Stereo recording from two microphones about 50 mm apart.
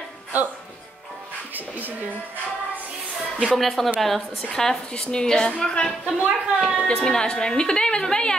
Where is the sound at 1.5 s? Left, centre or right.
Right.